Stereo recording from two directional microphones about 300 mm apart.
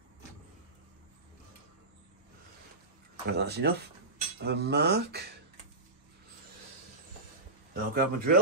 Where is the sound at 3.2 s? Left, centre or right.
Right.